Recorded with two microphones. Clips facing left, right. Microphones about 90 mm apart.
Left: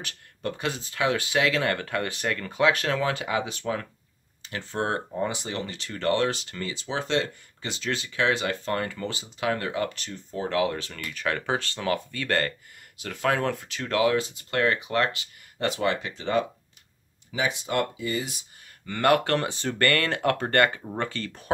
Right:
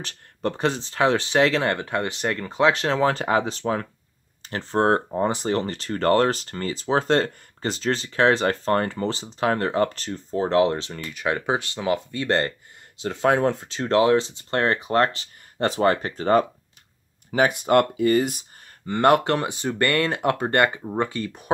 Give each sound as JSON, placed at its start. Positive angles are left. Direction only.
{"t": 0.0, "sound": "speech", "side_deg": -35}
{"t": 18.9, "sound": "speech", "side_deg": -25}